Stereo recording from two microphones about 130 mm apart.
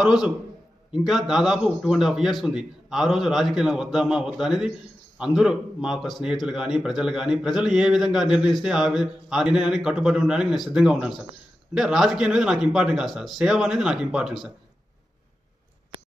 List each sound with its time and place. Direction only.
0.0 s a man's voice: 5° right (ahead or behind)